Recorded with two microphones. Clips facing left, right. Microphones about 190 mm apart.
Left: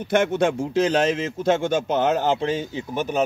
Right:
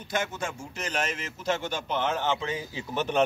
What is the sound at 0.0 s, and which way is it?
Speech, 65° left (ahead or behind).